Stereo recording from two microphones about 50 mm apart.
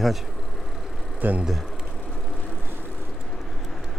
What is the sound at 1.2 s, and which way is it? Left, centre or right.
Speech, right.